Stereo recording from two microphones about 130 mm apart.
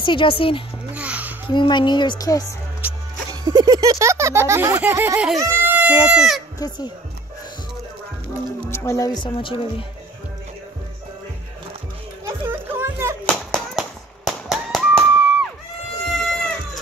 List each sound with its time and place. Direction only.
0.0 s speech: 40° left (ahead or behind)
0.9 s music: 10° right (ahead or behind)
1.5 s speech: 35° left (ahead or behind)
2.8 s music: 15° right (ahead or behind)
3.3 s a sound: 30° right (ahead or behind); by 5.3 s 15° right (ahead or behind)
5.4 s speech: 20° right (ahead or behind)
8.6 s speech: 20° left (ahead or behind); by 9.8 s 40° left (ahead or behind)
12.3 s music: 20° right (ahead or behind)
13.2 s music: 10° left (ahead or behind)
13.7 s a sound: centre (ahead or behind)
16.1 s a sound: centre (ahead or behind)